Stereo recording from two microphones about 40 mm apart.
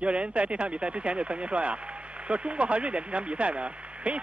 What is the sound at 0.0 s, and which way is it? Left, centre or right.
Speech, right.